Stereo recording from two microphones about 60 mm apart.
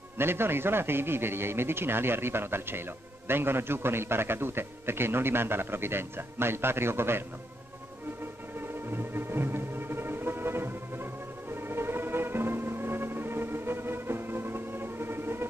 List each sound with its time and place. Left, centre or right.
0.2 s a man's voice: right
8.5 s music: right